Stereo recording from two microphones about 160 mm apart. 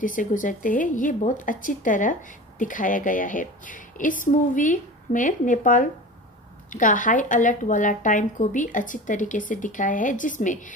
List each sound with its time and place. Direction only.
0.0 s a woman's voice: 55° left (ahead or behind)